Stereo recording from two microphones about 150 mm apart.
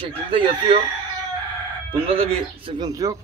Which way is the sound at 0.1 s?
35° right (ahead or behind).